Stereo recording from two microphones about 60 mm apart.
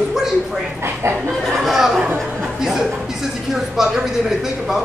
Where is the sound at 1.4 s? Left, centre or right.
Centre.